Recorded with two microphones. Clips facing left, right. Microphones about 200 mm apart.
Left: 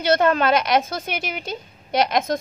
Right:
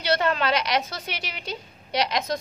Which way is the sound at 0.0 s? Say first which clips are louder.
Left 6 dB; 50° left (ahead or behind).